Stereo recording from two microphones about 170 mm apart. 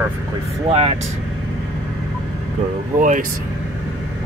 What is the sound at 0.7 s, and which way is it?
Speech, 35° right (ahead or behind).